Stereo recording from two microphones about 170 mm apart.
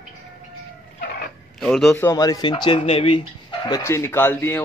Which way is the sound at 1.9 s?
15° left (ahead or behind).